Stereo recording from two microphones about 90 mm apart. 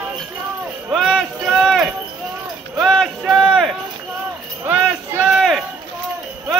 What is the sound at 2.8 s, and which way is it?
Clip-clop, 5° left (ahead or behind).